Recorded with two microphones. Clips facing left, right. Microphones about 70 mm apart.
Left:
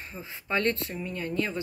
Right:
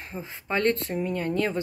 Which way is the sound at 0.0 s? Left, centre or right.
Right.